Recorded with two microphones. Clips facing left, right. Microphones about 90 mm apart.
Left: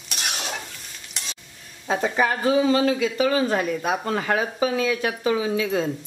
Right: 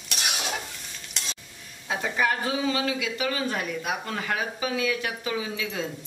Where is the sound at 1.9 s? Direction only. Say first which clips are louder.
Left 4 dB; 35° left (ahead or behind).